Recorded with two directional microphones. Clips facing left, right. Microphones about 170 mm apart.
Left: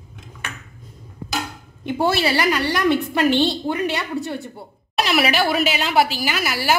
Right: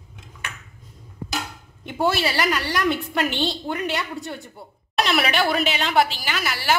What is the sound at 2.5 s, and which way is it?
A woman's voice, centre (ahead or behind).